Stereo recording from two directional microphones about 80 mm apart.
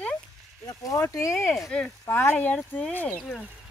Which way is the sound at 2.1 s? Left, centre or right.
Left.